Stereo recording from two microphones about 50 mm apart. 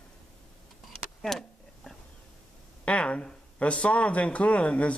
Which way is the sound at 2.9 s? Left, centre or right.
Left.